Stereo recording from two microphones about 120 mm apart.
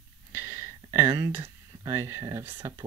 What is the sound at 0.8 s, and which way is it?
Speech, 20° right (ahead or behind).